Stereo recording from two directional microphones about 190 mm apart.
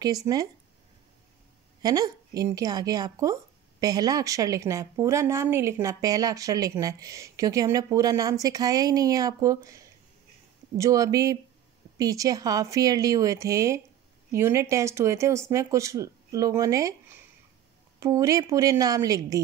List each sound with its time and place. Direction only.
0.0 s a woman's voice: 20° right (ahead or behind)
1.8 s a woman's voice: 20° right (ahead or behind)